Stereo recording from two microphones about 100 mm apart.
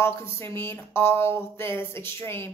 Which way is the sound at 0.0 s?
25° left (ahead or behind).